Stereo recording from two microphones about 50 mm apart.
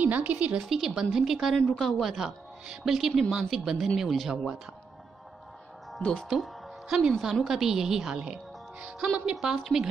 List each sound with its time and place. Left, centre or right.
0.2 s a woman's voice: right
0.6 s a woman's voice: centre
5.9 s speech: centre
6.3 s a woman's voice: centre